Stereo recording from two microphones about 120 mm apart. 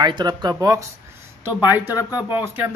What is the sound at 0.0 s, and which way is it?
Speech, 35° right (ahead or behind).